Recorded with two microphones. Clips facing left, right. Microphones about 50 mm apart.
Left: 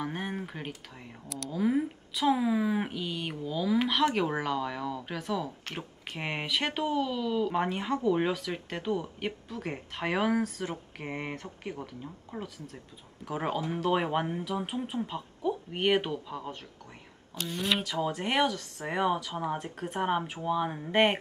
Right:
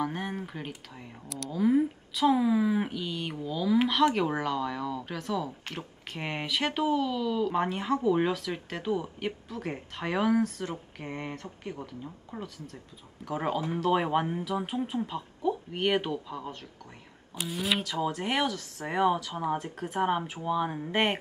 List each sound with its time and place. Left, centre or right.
0.0 s speech: centre
9.9 s speech: centre